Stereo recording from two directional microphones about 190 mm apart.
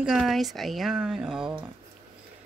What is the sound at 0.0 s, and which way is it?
Speech, centre (ahead or behind).